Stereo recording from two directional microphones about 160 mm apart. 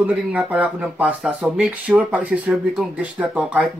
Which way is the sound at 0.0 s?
10° right (ahead or behind).